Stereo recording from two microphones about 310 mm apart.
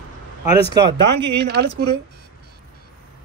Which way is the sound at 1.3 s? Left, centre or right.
Right.